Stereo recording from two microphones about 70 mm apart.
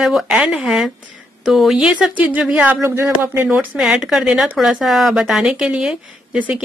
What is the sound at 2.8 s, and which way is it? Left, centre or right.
Speech, right.